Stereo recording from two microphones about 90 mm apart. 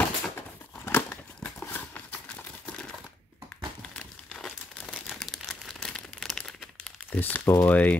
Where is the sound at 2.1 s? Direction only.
20° left (ahead or behind).